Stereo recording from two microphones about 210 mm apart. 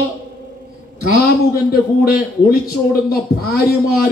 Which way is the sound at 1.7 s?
45° left (ahead or behind).